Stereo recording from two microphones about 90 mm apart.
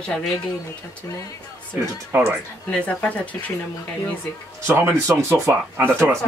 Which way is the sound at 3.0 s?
15° left (ahead or behind).